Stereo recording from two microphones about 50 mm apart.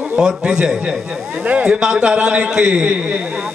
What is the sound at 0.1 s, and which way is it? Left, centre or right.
A man's voice, centre.